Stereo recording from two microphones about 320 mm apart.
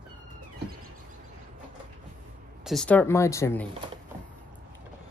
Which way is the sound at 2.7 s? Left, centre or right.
Centre.